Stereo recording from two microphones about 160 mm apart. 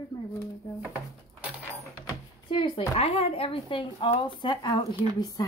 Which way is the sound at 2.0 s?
25° left (ahead or behind).